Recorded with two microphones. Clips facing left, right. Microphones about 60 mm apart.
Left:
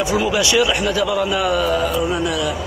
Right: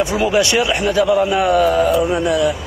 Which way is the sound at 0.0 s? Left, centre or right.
Right.